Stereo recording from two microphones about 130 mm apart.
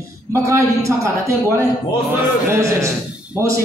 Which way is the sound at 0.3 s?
20° right (ahead or behind).